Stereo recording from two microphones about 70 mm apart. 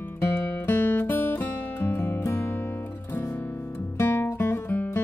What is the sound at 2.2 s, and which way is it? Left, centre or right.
Music, left.